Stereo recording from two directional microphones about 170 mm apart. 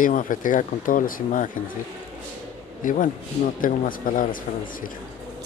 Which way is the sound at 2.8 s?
50° left (ahead or behind).